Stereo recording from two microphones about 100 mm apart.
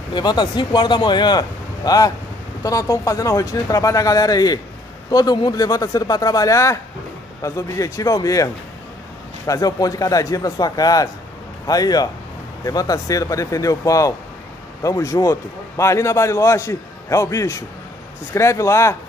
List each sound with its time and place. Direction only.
0.1 s speech: 45° left (ahead or behind)
9.5 s a man's voice: 40° left (ahead or behind)